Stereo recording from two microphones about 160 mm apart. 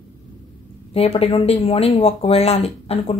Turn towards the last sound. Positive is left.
turn(degrees=40)  # may be behind; listen again after turning